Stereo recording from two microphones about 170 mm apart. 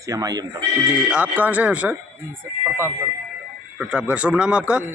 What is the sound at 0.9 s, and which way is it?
A man's voice, 10° right (ahead or behind).